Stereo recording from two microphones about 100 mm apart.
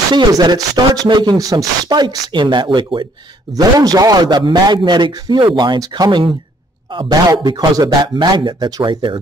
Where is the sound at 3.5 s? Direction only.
40° right (ahead or behind).